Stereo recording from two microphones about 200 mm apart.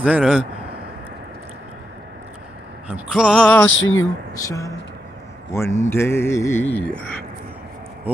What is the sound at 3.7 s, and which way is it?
Speech, 75° left (ahead or behind).